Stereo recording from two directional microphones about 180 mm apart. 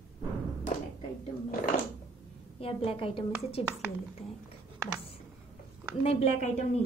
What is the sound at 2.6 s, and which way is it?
Speech, 30° left (ahead or behind).